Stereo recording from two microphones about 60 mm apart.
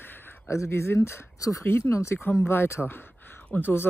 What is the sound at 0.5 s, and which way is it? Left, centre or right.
Speech, left.